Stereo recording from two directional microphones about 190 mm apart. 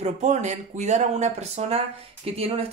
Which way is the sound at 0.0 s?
35° right (ahead or behind).